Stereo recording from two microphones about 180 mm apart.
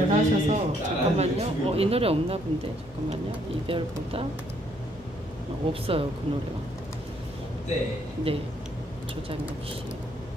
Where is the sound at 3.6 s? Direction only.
30° right (ahead or behind).